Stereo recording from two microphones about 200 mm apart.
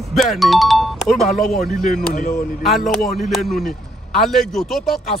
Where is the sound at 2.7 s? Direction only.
Centre (ahead or behind).